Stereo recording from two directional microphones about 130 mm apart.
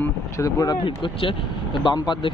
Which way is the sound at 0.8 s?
40° left (ahead or behind).